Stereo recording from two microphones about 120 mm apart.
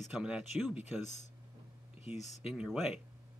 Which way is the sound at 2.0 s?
70° left (ahead or behind).